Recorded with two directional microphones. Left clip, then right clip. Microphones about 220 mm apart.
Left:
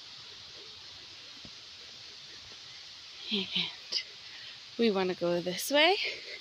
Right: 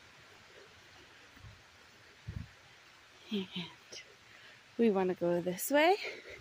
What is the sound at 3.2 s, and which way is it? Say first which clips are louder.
Speech: left 9 dB; 15° right (ahead or behind).